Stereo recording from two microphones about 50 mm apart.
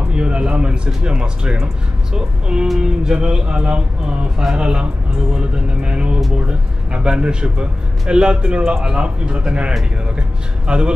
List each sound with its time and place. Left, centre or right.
0.1 s speech: right